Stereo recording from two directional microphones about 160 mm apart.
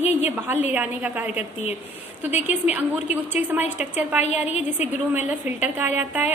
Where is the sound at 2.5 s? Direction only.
10° right (ahead or behind).